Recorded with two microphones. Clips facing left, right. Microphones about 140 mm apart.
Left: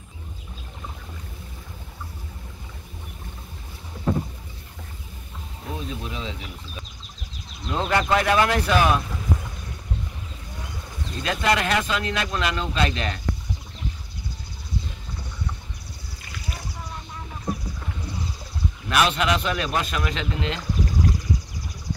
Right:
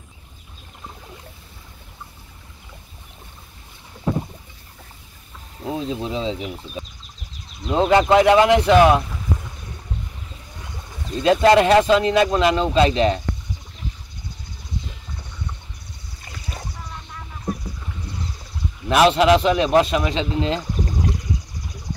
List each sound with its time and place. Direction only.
5.7 s speech: 30° right (ahead or behind)
11.2 s speech: 30° right (ahead or behind)
18.9 s speech: 30° right (ahead or behind)